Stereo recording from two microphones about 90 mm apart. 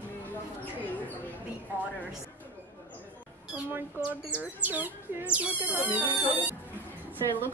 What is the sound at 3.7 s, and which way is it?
Speech, 20° right (ahead or behind).